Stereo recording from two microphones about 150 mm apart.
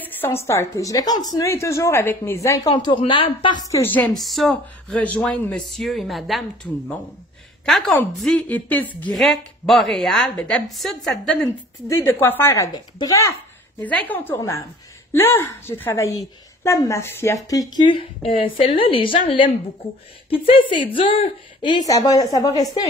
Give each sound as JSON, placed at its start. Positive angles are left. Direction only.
{"t": 0.2, "sound": "a woman's voice", "side_deg": 15}
{"t": 2.7, "sound": "a woman's voice", "side_deg": 30}
{"t": 11.4, "sound": "a woman's voice", "side_deg": 15}
{"t": 13.8, "sound": "a woman's voice", "side_deg": 10}